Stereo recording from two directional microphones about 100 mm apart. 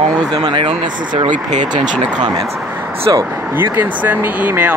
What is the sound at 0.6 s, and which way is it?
Speech, 65° right (ahead or behind).